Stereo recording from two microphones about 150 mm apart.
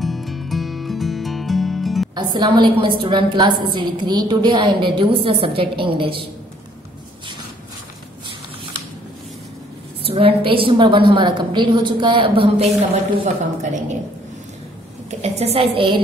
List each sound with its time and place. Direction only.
0.0 s music: centre (ahead or behind)
2.1 s a woman's voice: 30° right (ahead or behind)
10.0 s a woman's voice: 40° right (ahead or behind)
13.2 s speech: 55° right (ahead or behind)
15.0 s a woman's voice: 45° right (ahead or behind)